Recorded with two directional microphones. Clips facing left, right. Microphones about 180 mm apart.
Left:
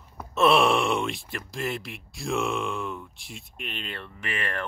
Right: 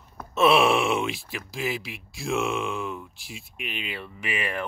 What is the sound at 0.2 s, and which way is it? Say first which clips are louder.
Speech: right 1 dB; centre (ahead or behind).